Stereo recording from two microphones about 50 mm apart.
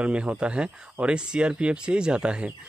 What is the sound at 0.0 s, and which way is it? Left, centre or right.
Speech, right.